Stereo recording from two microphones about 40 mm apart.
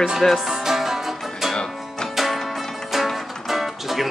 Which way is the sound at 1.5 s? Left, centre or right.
Centre.